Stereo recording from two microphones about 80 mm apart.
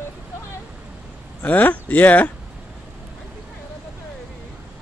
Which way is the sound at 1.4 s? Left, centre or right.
Left.